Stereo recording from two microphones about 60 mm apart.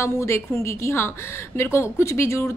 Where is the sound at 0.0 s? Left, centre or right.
Left.